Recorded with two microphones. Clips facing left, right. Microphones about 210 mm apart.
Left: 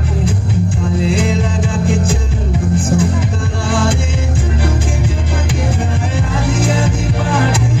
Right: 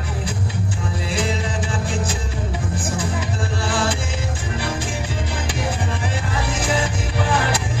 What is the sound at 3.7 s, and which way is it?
Music, 50° left (ahead or behind).